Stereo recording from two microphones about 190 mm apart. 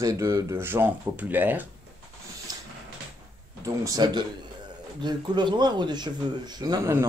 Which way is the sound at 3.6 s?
15° right (ahead or behind).